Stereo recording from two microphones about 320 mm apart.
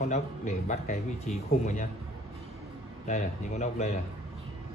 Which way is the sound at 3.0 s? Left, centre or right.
Left.